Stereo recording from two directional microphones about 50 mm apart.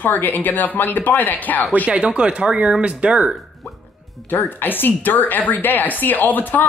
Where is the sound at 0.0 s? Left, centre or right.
Left.